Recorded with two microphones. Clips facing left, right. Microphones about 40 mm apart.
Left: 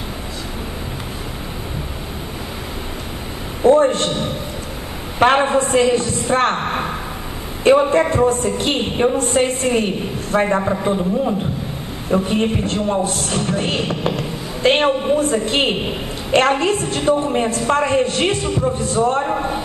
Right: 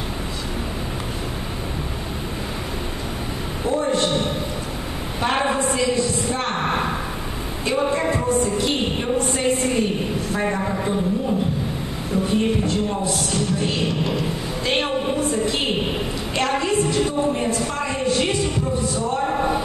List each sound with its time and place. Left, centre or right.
3.6 s a sound: left
5.4 s a woman's voice: left
7.6 s a woman's voice: left